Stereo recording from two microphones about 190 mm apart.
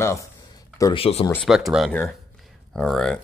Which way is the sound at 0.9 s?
30° left (ahead or behind).